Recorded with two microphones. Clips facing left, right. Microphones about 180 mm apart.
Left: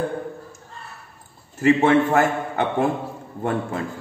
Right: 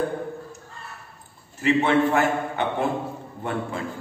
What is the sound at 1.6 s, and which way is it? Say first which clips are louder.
A man's voice: left 3 dB; 45° left (ahead or behind).